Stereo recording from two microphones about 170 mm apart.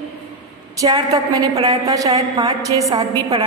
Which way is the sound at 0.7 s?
20° right (ahead or behind).